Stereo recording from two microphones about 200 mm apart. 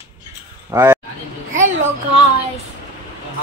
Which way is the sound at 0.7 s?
10° right (ahead or behind).